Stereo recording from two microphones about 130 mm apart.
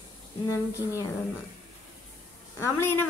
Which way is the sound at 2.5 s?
20° left (ahead or behind).